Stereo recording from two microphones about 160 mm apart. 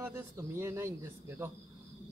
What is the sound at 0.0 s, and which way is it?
Speech, 15° right (ahead or behind).